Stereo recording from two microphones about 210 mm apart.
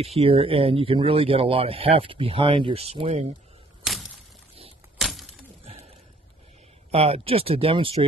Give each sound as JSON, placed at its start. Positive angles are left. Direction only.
{"t": 0.0, "sound": "speech", "side_deg": -30}
{"t": 4.9, "sound": "a sound", "side_deg": 0}
{"t": 6.9, "sound": "speech", "side_deg": -30}